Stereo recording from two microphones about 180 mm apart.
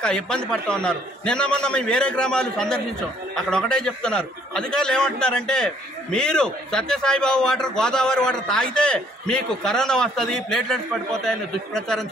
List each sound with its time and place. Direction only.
0.0 s a man's voice: 5° left (ahead or behind)